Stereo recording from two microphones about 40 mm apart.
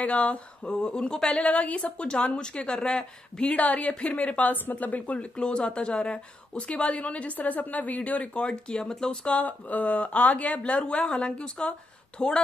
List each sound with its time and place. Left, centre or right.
0.0 s speech: left
0.8 s speech: centre
1.3 s speech: left
3.5 s speech: left
4.7 s speech: left
5.4 s speech: left
8.4 s speech: left
9.2 s speech: left